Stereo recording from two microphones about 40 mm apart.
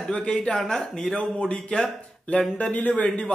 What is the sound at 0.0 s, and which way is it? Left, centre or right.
Speech, left.